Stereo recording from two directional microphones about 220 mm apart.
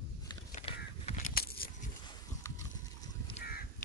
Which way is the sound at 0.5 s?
30° left (ahead or behind).